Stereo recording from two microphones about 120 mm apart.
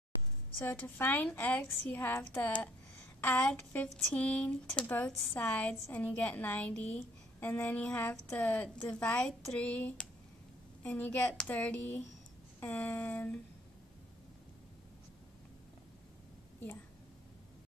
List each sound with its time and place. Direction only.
0.6 s speech: 15° left (ahead or behind)